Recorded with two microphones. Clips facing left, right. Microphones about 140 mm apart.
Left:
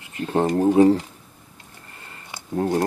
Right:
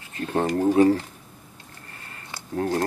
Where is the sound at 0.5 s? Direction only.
20° left (ahead or behind).